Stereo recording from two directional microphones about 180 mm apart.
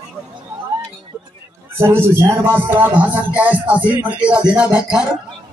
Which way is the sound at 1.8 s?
15° right (ahead or behind).